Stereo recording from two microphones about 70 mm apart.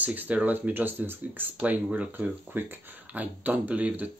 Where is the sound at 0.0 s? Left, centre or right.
Right.